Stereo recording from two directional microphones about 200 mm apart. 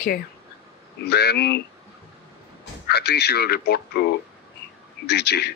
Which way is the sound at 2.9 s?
55° left (ahead or behind).